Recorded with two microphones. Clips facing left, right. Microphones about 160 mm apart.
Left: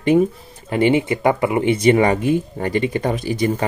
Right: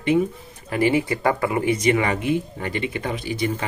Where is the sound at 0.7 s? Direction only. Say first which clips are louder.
Left 4 dB; 25° left (ahead or behind).